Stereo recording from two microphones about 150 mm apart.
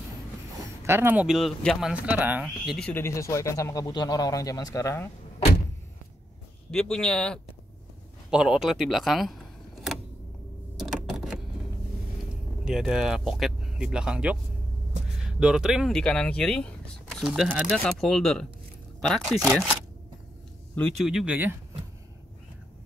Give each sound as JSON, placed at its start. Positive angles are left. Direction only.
{"t": 0.8, "sound": "speech", "side_deg": -15}
{"t": 1.2, "sound": "speech", "side_deg": 0}
{"t": 2.9, "sound": "speech", "side_deg": 15}
{"t": 6.7, "sound": "speech", "side_deg": 5}
{"t": 10.8, "sound": "a sound", "side_deg": 0}
{"t": 12.6, "sound": "speech", "side_deg": -5}
{"t": 16.0, "sound": "speech", "side_deg": 5}
{"t": 20.9, "sound": "speech", "side_deg": 0}